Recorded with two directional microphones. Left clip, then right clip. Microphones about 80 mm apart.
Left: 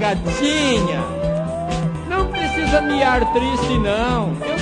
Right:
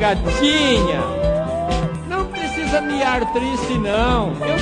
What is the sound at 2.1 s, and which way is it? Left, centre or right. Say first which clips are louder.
Music: left 3 dB; left.